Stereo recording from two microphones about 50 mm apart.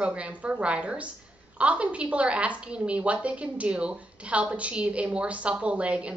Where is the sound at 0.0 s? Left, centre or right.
Right.